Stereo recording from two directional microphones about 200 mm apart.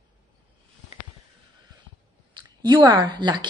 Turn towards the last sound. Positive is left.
turn(degrees=-25)  # may be behind; listen again after turning